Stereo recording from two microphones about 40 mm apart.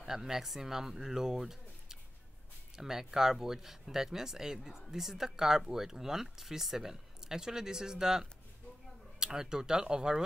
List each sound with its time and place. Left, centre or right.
0.0 s speech: centre